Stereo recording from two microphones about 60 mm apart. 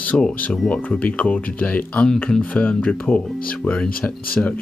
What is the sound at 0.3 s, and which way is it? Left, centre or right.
Speech, left.